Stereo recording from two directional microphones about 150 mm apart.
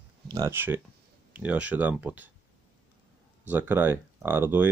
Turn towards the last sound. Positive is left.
turn(degrees=-15)  # may be behind; listen again after turning